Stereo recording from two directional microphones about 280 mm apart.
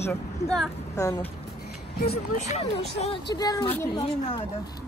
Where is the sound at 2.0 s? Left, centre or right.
Left.